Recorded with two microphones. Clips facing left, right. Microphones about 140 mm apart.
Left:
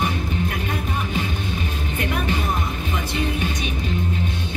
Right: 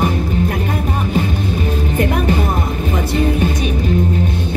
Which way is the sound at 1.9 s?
45° right (ahead or behind).